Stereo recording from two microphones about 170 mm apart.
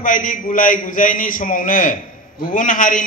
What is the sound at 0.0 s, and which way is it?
A man's voice, 50° left (ahead or behind).